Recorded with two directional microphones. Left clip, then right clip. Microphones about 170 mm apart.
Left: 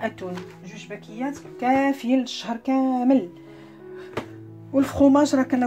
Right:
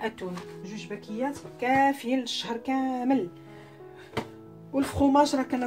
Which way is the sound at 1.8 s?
40° left (ahead or behind).